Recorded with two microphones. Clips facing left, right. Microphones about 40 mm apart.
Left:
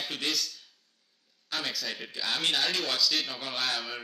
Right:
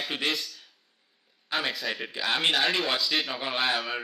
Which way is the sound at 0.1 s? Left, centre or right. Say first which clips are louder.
Right 3 dB; right.